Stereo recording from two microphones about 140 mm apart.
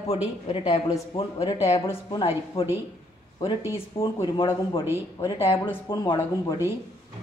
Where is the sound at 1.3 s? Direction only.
25° left (ahead or behind).